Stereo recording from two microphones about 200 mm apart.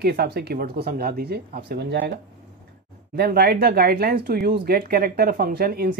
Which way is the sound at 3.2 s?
50° right (ahead or behind).